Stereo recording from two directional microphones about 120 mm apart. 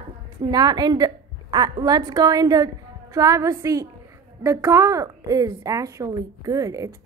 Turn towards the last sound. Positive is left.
turn(degrees=-30)  # may be behind; listen again after turning